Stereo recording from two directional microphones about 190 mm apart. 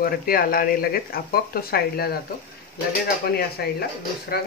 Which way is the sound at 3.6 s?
60° left (ahead or behind).